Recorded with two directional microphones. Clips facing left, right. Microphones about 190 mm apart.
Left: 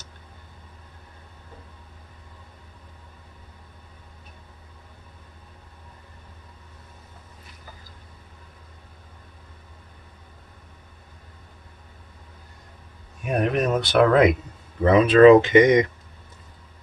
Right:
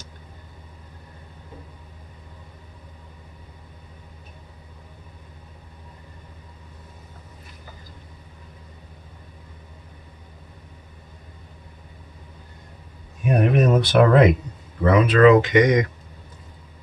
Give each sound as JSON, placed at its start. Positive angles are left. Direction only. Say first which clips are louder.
{"t": 13.4, "sound": "speech", "louder": "right 3 dB", "side_deg": -5}
{"t": 14.8, "sound": "speech", "louder": "left 2 dB", "side_deg": 25}